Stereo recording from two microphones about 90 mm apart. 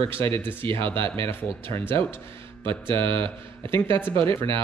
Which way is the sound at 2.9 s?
75° right (ahead or behind).